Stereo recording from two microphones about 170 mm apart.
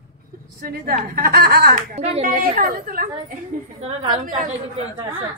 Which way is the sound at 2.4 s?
55° right (ahead or behind).